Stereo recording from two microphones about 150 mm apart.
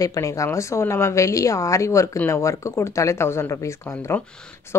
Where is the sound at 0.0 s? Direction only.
20° left (ahead or behind).